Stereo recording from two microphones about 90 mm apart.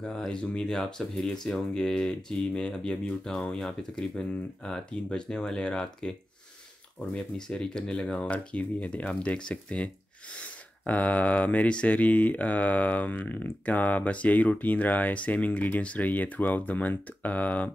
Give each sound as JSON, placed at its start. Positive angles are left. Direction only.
{"t": 0.0, "sound": "speech", "side_deg": 10}